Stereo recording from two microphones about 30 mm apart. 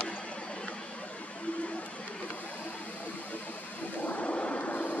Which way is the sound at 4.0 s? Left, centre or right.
Left.